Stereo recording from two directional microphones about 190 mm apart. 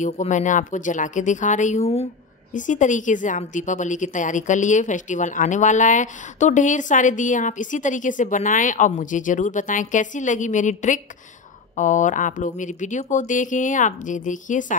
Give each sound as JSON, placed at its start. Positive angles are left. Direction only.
{"t": 0.0, "sound": "a woman's voice", "side_deg": 40}